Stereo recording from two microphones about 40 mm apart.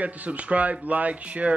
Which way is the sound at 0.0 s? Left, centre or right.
Right.